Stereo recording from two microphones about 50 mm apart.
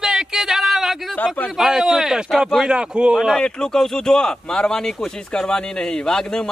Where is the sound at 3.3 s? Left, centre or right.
Centre.